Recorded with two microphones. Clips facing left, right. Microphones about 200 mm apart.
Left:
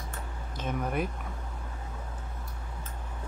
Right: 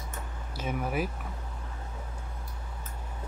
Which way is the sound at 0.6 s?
5° right (ahead or behind).